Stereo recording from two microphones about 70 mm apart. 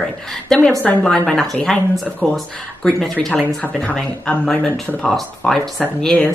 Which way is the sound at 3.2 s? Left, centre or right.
Centre.